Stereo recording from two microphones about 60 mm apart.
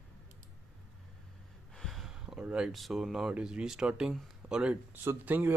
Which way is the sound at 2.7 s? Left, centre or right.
Centre.